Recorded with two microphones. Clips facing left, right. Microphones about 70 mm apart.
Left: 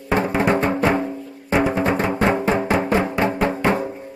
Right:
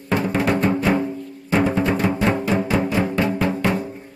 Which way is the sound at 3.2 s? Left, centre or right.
Left.